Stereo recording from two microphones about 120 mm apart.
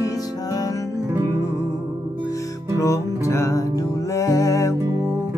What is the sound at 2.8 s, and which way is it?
Music, 25° left (ahead or behind).